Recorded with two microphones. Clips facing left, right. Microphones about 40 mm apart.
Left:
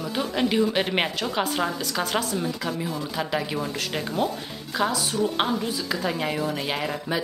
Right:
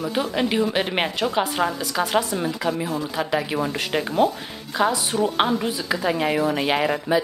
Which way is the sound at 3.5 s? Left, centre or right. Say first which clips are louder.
Right 5 dB; right.